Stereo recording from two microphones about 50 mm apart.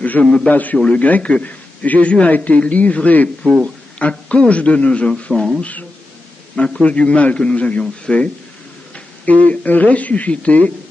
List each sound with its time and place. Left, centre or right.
0.2 s speech: centre
0.5 s a man's voice: left
5.1 s speech: centre
5.6 s a man's voice: left
6.5 s a man's voice: centre
8.9 s speech: left